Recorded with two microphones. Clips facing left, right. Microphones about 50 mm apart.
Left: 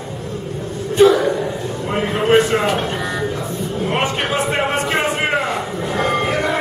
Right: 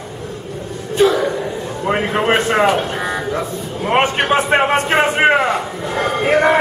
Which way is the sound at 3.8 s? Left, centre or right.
Right.